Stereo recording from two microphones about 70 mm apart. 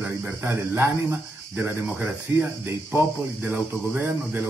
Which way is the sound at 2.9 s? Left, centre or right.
Right.